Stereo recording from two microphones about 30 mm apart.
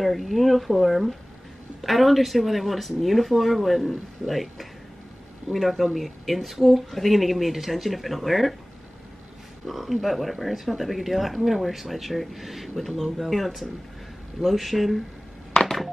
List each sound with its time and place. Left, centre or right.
0.0 s speech: centre
9.7 s speech: centre
15.5 s a sound: centre